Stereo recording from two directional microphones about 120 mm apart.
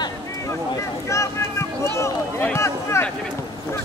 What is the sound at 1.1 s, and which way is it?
Run, 25° left (ahead or behind).